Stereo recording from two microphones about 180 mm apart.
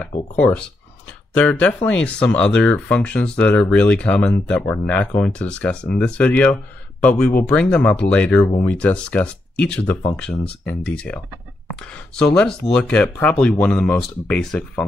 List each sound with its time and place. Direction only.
0.4 s speech: 5° left (ahead or behind)
12.2 s speech: 5° left (ahead or behind)